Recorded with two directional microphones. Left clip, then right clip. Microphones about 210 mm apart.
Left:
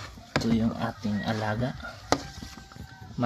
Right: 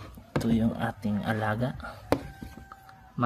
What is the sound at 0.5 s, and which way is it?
Speech, 20° right (ahead or behind).